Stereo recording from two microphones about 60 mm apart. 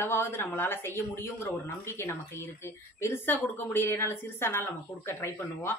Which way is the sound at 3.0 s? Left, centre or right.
Left.